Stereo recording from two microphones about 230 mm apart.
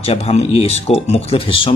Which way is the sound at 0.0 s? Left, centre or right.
Left.